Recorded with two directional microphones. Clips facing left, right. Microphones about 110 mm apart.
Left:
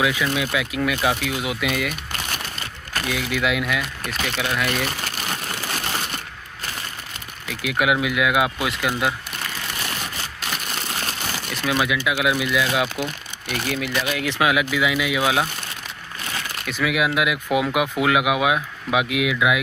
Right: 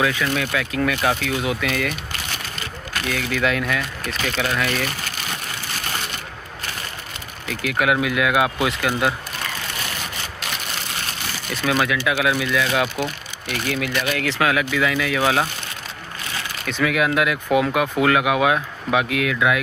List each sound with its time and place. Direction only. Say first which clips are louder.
0.0 s speech: even; 10° left (ahead or behind)
3.1 s speech: right 1 dB; 10° left (ahead or behind)
7.4 s speech: right 1 dB; 5° left (ahead or behind)
11.6 s speech: right 2 dB; 5° left (ahead or behind)
12.8 s speech: right 2 dB; 15° right (ahead or behind)
13.5 s speech: right 1 dB; centre (ahead or behind)
16.6 s speech: right 2 dB; 5° left (ahead or behind)